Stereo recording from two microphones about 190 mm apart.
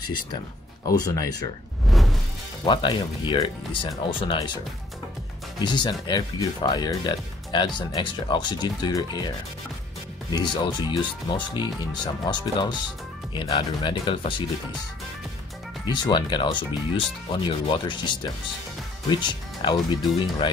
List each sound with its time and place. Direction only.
0.8 s speech: 20° left (ahead or behind)
1.9 s music: centre (ahead or behind)
2.6 s speech: 25° left (ahead or behind)
5.6 s speech: 25° left (ahead or behind)
10.3 s speech: 25° left (ahead or behind)
15.8 s speech: 25° left (ahead or behind)